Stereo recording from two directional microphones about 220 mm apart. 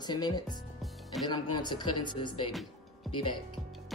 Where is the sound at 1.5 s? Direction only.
20° left (ahead or behind).